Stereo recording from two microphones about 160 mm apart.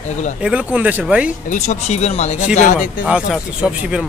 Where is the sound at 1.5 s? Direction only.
45° left (ahead or behind).